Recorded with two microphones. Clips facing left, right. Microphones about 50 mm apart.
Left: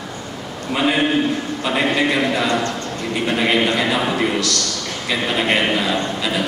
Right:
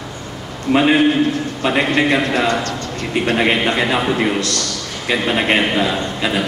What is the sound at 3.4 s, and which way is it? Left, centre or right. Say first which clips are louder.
Speech: even; right.